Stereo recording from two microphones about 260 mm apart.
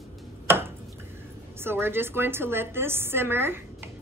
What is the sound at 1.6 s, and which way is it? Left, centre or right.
A woman's voice, centre.